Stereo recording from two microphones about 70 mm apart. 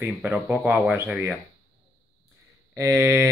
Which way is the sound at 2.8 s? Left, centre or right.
Right.